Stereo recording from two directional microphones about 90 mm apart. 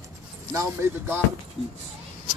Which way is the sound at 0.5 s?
30° right (ahead or behind).